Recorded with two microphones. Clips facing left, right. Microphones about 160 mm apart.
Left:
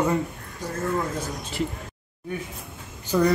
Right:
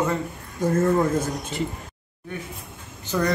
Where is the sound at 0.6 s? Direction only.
50° right (ahead or behind).